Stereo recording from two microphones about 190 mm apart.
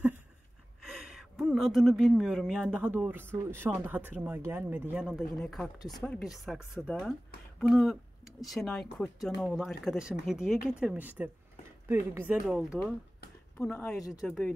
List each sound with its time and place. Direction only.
0.8 s speech: 5° right (ahead or behind)
13.6 s speech: 10° left (ahead or behind)
14.2 s speech: 5° left (ahead or behind)